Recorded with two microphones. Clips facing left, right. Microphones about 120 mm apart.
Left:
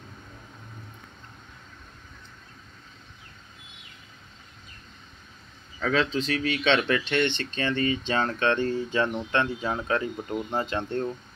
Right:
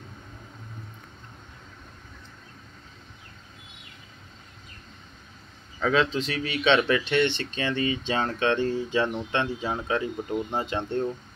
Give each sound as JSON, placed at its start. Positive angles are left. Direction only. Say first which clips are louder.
{"t": 5.9, "sound": "speech", "louder": "even", "side_deg": -20}